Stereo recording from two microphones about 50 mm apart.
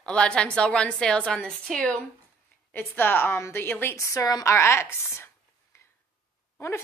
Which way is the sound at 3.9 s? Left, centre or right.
Left.